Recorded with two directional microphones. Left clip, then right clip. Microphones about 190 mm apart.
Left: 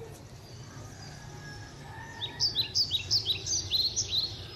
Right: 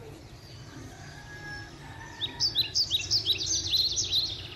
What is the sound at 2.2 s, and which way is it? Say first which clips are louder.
Chirp: right 2 dB; centre (ahead or behind).